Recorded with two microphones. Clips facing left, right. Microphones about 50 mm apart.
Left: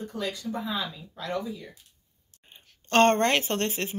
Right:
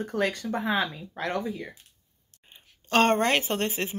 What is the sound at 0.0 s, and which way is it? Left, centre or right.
Speech, right.